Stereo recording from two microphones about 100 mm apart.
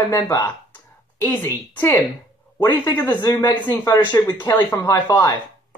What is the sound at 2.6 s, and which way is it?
Speech, 40° left (ahead or behind).